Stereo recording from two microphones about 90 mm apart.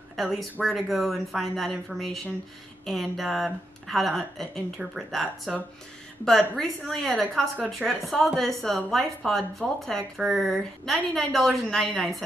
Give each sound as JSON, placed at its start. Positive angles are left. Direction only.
{"t": 0.1, "sound": "speech", "side_deg": 0}
{"t": 7.5, "sound": "speech", "side_deg": -15}
{"t": 8.4, "sound": "speech", "side_deg": 5}